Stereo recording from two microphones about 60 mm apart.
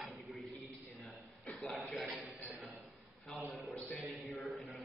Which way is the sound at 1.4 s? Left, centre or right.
Left.